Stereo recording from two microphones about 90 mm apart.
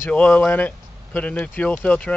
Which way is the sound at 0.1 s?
15° left (ahead or behind).